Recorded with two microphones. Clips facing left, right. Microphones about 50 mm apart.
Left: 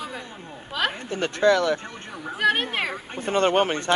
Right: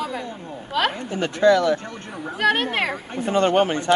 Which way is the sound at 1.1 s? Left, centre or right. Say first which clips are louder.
Right 3 dB; left.